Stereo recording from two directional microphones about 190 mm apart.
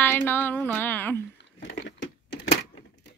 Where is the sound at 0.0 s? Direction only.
10° left (ahead or behind).